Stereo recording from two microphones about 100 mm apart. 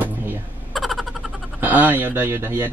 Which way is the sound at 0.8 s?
Centre (ahead or behind).